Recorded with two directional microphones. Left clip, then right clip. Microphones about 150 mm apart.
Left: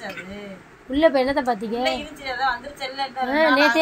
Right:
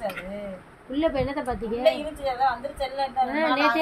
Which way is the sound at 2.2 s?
30° right (ahead or behind).